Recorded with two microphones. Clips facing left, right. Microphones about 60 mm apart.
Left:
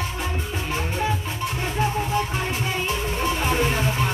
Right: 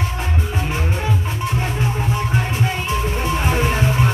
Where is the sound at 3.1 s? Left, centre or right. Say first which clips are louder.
Even; centre.